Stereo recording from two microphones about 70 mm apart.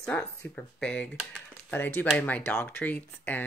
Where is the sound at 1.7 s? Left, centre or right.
Left.